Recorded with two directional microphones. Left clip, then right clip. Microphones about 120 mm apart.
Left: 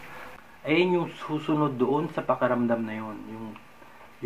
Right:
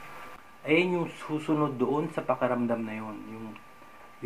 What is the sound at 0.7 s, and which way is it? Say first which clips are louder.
Speech: left 2 dB; 25° left (ahead or behind).